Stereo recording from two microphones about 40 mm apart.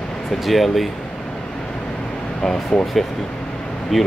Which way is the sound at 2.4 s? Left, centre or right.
Centre.